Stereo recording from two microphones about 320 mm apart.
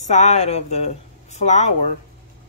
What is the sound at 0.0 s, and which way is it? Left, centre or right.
Speech, left.